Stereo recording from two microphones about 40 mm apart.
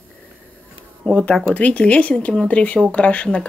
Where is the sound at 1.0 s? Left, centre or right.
Left.